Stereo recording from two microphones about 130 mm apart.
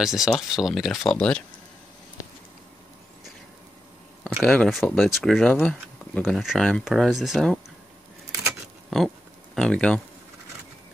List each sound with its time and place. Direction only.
0.0 s speech: 5° right (ahead or behind)
4.4 s speech: 5° left (ahead or behind)
6.2 s speech: centre (ahead or behind)
9.6 s speech: 5° left (ahead or behind)